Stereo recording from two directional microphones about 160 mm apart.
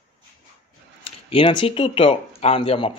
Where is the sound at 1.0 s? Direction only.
35° left (ahead or behind).